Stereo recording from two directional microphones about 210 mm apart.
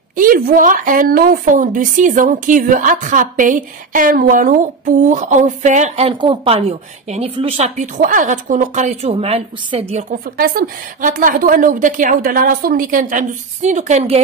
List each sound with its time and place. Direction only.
0.1 s a woman's voice: 40° right (ahead or behind)
10.3 s a woman's voice: 45° right (ahead or behind)